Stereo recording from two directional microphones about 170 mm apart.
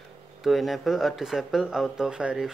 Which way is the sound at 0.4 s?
Centre (ahead or behind).